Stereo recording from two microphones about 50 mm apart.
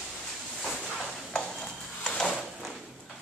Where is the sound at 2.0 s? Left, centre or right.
Centre.